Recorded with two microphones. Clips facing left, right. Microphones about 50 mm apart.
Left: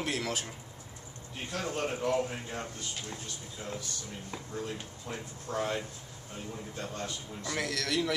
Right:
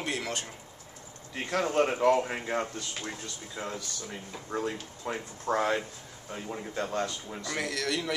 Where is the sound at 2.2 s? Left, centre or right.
Right.